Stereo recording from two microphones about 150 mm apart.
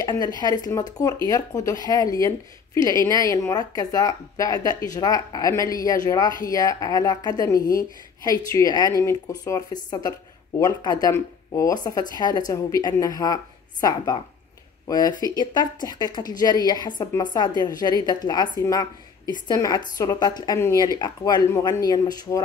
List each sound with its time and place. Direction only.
0.0 s speech: 25° left (ahead or behind)